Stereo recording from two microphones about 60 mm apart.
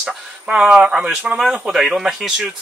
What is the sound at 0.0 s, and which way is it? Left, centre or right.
Speech, centre.